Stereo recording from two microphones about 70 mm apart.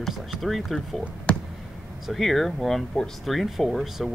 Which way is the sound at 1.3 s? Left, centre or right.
Centre.